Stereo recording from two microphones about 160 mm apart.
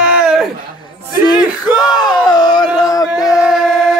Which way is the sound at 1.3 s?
25° left (ahead or behind).